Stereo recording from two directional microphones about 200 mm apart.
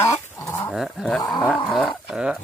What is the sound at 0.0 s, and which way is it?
Chicken, 15° left (ahead or behind).